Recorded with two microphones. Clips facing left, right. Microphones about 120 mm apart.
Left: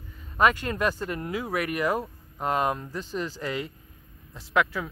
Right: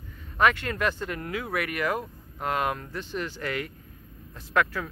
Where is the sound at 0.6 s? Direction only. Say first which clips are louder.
Left 1 dB; 35° left (ahead or behind).